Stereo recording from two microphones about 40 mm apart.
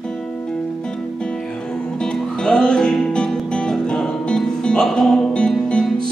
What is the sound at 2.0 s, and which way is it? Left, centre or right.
Music, left.